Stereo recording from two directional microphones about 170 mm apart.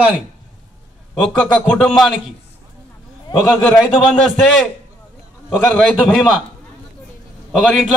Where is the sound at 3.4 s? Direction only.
Centre (ahead or behind).